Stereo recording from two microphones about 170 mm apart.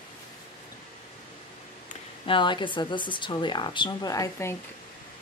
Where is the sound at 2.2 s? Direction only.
30° left (ahead or behind).